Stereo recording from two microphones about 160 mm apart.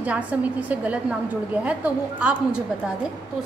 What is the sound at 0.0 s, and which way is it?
A woman's voice, 10° right (ahead or behind).